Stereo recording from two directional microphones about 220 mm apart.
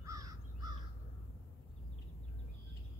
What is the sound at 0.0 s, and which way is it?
Crow, 15° right (ahead or behind).